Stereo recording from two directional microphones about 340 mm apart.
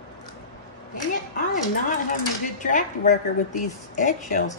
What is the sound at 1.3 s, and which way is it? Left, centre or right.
Speech, left.